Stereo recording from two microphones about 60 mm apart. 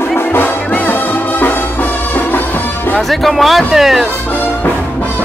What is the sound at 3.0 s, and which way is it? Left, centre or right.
Speech, centre.